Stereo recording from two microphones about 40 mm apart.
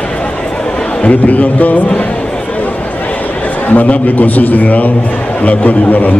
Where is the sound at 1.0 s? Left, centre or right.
Left.